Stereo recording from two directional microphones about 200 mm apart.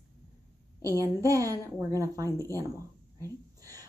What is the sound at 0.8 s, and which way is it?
Female singing, 15° right (ahead or behind).